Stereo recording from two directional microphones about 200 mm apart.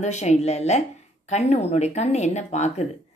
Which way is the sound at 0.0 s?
35° left (ahead or behind).